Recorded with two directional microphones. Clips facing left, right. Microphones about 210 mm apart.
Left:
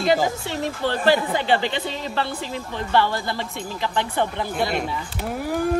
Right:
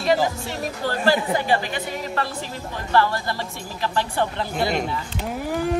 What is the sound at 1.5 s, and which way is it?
Speech, 25° left (ahead or behind).